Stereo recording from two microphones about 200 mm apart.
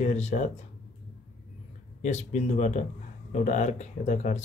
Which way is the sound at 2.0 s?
35° left (ahead or behind).